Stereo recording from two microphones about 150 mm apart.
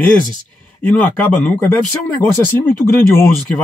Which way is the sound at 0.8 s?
10° left (ahead or behind).